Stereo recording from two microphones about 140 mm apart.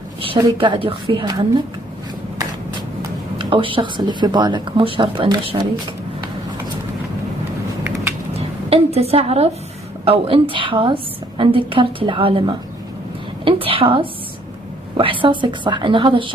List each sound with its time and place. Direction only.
0.6 s a woman's voice: 40° right (ahead or behind)
3.3 s a woman's voice: 40° right (ahead or behind)
8.3 s a sound: 45° right (ahead or behind)
10.0 s a woman's voice: 45° right (ahead or behind)